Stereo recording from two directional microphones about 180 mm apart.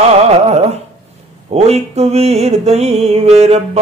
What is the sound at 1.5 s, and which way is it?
A man's voice, 35° right (ahead or behind).